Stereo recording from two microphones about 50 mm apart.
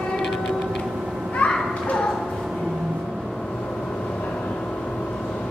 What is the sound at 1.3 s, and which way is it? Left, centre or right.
Children playing, left.